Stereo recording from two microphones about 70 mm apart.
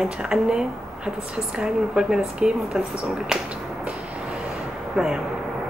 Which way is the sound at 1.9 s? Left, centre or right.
Centre.